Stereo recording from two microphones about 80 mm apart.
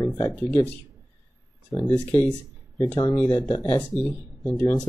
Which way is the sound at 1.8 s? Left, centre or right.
Centre.